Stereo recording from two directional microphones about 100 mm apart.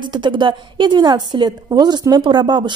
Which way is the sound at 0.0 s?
50° right (ahead or behind).